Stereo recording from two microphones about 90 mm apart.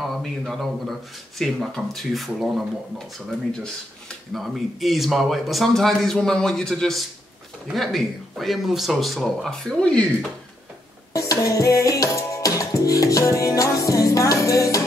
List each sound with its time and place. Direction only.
0.0 s speech: centre (ahead or behind)
11.1 s music: 35° left (ahead or behind)